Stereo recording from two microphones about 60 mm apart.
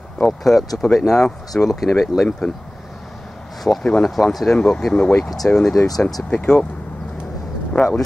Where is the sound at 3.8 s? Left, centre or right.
Centre.